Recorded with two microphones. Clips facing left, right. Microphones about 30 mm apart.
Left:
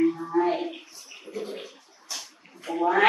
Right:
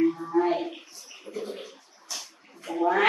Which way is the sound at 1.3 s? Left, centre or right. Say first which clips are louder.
Left 1 dB; centre.